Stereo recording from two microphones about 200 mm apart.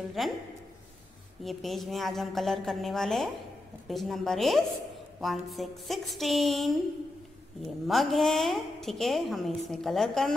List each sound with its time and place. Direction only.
0.2 s a woman's voice: centre (ahead or behind)
1.4 s a woman's voice: centre (ahead or behind)
7.8 s a woman's voice: centre (ahead or behind)